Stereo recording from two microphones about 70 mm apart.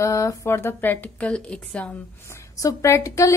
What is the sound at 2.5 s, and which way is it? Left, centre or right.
Speech, left.